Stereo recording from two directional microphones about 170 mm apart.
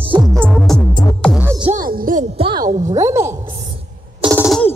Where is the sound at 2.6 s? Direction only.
45° right (ahead or behind).